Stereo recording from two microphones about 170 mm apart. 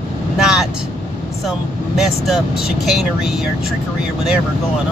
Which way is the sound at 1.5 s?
Centre (ahead or behind).